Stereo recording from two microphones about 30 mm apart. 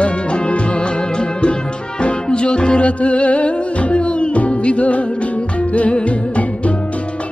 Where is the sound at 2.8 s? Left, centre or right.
Left.